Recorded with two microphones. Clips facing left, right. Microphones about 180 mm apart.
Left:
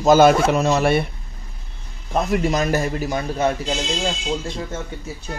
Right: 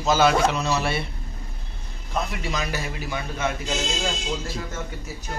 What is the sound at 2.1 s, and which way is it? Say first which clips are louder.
A man's voice: left 8 dB; 45° left (ahead or behind).